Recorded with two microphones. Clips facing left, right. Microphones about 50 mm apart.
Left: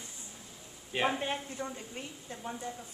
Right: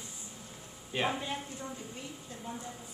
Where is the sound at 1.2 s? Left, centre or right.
Left.